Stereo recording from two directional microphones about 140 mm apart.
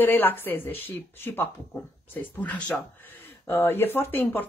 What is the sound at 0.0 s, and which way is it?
Speech, 15° left (ahead or behind).